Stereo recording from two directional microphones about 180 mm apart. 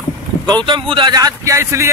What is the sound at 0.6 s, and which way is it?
Speech, 30° right (ahead or behind).